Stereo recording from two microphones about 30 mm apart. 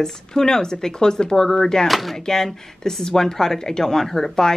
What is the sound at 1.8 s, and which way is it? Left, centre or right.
Speech, centre.